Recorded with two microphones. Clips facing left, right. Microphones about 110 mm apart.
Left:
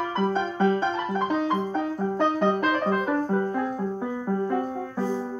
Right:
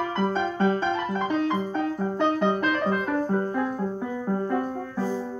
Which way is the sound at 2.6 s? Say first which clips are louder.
Left 1 dB; 20° left (ahead or behind).